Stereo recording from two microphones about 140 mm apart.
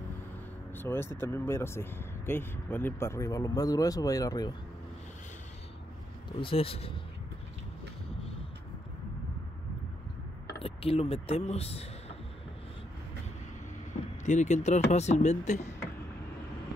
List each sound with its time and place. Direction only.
0.7 s speech: 15° left (ahead or behind)
6.4 s a man's voice: 40° left (ahead or behind)
10.6 s speech: 45° left (ahead or behind)
14.2 s speech: 60° left (ahead or behind)